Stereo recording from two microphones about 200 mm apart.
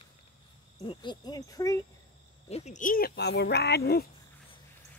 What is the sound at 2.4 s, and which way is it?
Speech, 35° left (ahead or behind).